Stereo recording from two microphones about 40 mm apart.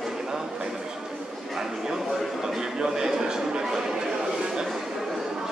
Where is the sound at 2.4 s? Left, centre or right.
Centre.